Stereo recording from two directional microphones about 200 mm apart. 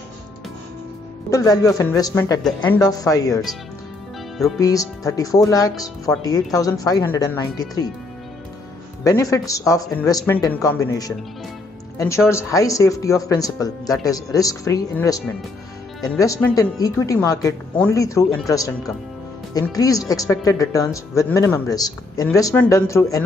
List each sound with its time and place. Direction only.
1.3 s speech: 15° left (ahead or behind)
4.6 s speech: 15° left (ahead or behind)
9.0 s speech: 15° left (ahead or behind)
12.3 s speech: 15° left (ahead or behind)